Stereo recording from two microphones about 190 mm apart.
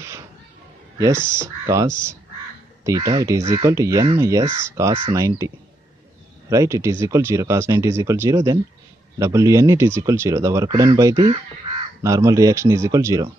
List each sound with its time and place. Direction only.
0.0 s a sound: 15° right (ahead or behind)
0.9 s speech: 15° right (ahead or behind)
6.5 s speech: 15° right (ahead or behind)